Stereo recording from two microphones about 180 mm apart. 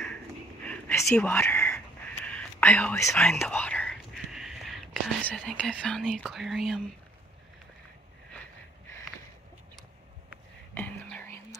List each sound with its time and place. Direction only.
0.7 s a sound: 15° left (ahead or behind)
2.2 s whispering: 10° left (ahead or behind)
10.7 s whispering: 10° left (ahead or behind)